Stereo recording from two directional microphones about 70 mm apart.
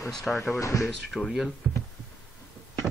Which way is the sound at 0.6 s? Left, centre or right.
Left.